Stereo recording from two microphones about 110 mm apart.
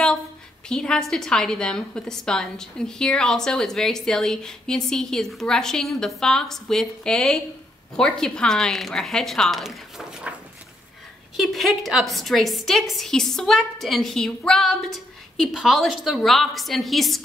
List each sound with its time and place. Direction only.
0.7 s a woman's voice: 5° left (ahead or behind)
11.3 s a woman's voice: centre (ahead or behind)